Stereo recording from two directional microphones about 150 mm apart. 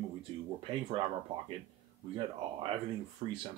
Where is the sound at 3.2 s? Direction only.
35° right (ahead or behind).